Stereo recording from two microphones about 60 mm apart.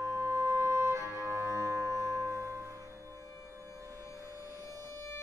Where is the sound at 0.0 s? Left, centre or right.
Right.